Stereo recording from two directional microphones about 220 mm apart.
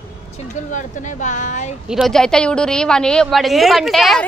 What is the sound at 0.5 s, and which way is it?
Speech, 35° left (ahead or behind).